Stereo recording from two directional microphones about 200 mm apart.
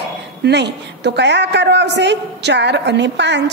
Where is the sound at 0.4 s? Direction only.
55° right (ahead or behind).